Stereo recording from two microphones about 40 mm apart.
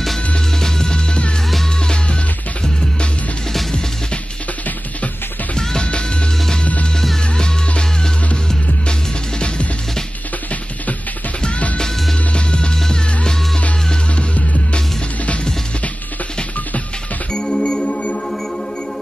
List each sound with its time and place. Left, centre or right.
0.6 s music: centre
5.6 s music: centre
11.4 s music: left
15.2 s music: left
17.3 s music: left
17.8 s music: left